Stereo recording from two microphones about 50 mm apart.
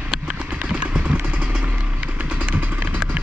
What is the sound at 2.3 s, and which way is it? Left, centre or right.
Vehicle, right.